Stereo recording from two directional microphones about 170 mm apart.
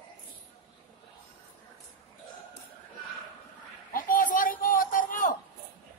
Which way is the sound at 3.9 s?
55° left (ahead or behind).